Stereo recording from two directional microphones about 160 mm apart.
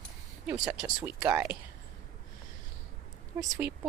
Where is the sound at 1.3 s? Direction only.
15° right (ahead or behind).